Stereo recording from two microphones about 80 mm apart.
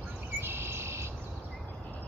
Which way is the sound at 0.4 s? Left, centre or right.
Right.